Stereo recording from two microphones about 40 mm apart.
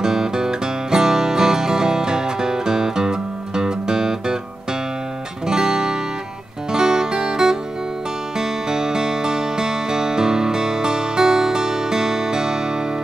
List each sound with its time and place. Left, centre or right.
0.0 s music: centre
5.5 s music: centre